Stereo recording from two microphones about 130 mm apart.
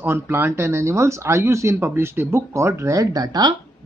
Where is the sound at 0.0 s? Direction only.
15° right (ahead or behind).